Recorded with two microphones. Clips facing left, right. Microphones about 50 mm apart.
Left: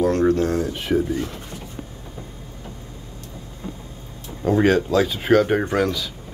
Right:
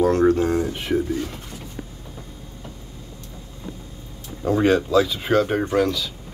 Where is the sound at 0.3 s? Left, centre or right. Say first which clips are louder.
Even; centre.